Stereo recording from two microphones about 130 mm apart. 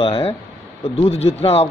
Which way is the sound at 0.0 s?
45° left (ahead or behind).